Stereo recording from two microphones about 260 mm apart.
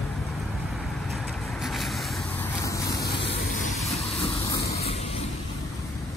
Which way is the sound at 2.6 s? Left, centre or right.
Centre.